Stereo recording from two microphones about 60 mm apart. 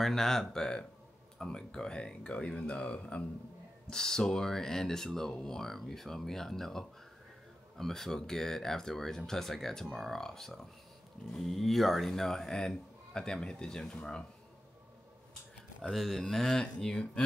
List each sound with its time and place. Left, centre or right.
0.0 s speech: centre
15.8 s speech: centre